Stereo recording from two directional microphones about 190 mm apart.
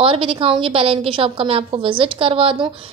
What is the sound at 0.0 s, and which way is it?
A woman's voice, 30° right (ahead or behind).